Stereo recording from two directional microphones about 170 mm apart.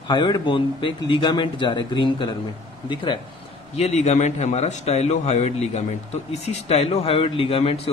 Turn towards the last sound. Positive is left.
turn(degrees=35)  # may be behind; listen again after turning